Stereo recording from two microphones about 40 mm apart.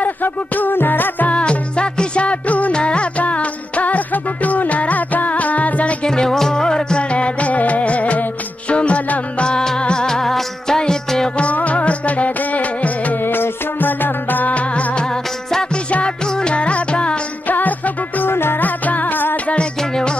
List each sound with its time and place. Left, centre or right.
0.0 s music: left
1.3 s music: left
2.7 s music: left
6.0 s music: centre
7.0 s music: left; by 11.2 s centre
11.5 s music: left
13.2 s music: left
14.5 s music: left
17.5 s music: left
18.3 s music: left
18.6 s music: left
19.3 s music: left
19.8 s music: centre